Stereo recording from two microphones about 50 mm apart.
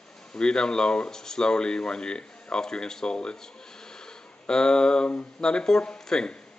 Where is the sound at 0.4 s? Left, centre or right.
Centre.